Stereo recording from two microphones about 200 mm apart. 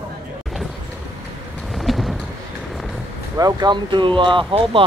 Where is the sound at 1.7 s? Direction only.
Centre (ahead or behind).